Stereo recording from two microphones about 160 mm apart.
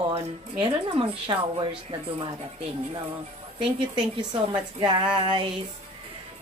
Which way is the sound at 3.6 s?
30° right (ahead or behind).